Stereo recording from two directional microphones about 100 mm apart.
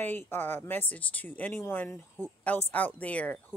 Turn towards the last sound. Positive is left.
turn(degrees=15)  # may be behind; listen again after turning